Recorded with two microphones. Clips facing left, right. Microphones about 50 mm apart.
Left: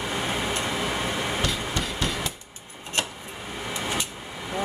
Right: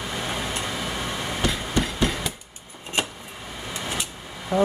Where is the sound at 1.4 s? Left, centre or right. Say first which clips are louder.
Right 3 dB; right.